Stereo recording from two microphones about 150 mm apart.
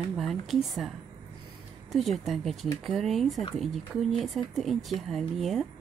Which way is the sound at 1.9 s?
Centre (ahead or behind).